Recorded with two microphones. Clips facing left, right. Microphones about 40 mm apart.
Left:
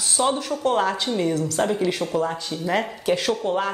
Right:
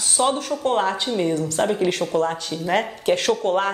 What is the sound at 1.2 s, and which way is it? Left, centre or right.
Speech, right.